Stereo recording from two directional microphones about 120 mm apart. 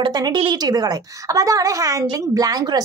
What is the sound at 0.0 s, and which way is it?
A woman's voice, 35° right (ahead or behind).